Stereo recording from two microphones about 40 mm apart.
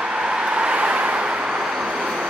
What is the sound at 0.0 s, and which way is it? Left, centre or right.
Vehicle, right.